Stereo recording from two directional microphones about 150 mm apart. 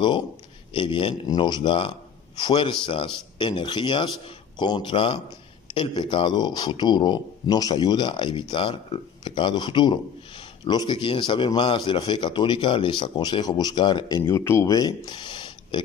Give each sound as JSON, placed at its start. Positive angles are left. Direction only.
{"t": 0.7, "sound": "speech", "side_deg": 35}